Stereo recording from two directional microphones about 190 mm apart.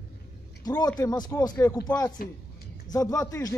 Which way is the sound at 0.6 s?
20° left (ahead or behind).